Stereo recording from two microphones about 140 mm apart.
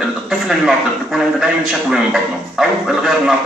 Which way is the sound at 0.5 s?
5° right (ahead or behind).